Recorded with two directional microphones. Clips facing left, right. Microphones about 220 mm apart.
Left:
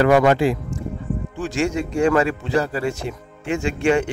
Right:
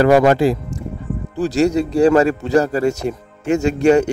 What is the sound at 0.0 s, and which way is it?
Speech, 35° right (ahead or behind).